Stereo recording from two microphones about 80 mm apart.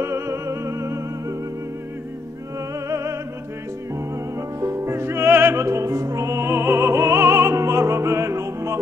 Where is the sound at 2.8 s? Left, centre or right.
Right.